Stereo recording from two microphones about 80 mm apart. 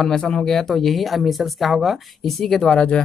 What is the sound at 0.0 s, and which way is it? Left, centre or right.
Speech, centre.